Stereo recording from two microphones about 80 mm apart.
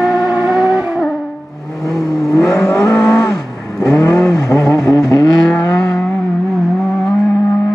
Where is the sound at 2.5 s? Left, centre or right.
Left.